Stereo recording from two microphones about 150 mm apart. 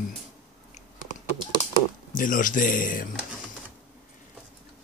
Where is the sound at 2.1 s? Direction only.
60° left (ahead or behind).